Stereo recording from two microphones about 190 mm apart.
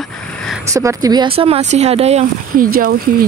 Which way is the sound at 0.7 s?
15° right (ahead or behind).